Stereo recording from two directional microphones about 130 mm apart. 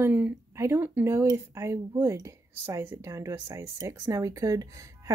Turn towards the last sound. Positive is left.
turn(degrees=-25)  # may be behind; listen again after turning